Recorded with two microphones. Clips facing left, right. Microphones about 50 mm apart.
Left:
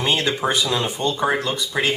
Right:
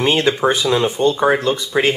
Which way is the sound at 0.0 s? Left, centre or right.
Right.